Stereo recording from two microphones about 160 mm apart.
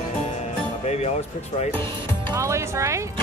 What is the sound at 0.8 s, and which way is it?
Speech, 40° left (ahead or behind).